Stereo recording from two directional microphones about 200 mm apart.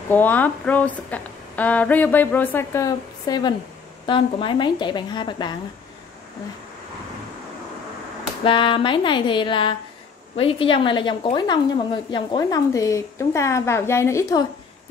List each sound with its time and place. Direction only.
0.1 s a woman's voice: 10° left (ahead or behind)
8.5 s a woman's voice: 25° left (ahead or behind)